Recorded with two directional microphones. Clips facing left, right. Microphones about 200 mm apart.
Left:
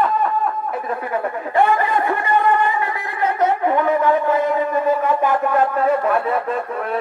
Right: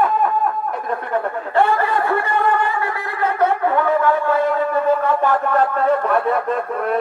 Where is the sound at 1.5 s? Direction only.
15° left (ahead or behind).